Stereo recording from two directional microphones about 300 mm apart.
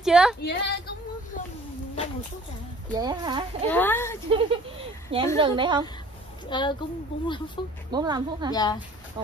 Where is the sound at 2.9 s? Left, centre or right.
Centre.